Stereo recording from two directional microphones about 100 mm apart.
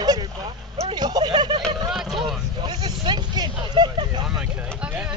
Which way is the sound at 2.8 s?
50° right (ahead or behind).